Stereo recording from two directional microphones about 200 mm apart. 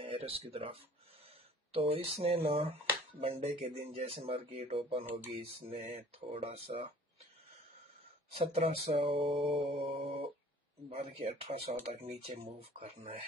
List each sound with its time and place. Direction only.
0.0 s speech: 30° right (ahead or behind)
8.4 s speech: 30° right (ahead or behind)